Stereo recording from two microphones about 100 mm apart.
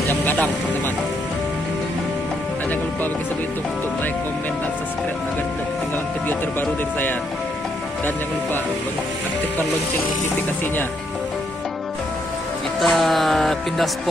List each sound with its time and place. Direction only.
0.1 s vehicle: 20° left (ahead or behind)
6.2 s speech: 20° left (ahead or behind)
12.8 s music: centre (ahead or behind)